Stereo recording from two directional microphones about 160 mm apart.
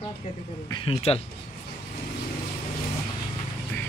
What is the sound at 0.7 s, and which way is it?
Speech, 35° left (ahead or behind).